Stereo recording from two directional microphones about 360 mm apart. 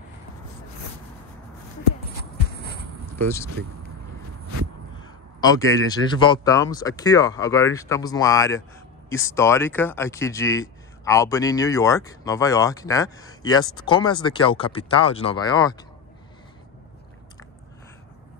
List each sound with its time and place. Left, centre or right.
2.3 s walk: left
5.0 s a man's voice: centre